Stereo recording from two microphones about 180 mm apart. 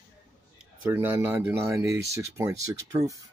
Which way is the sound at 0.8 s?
10° right (ahead or behind).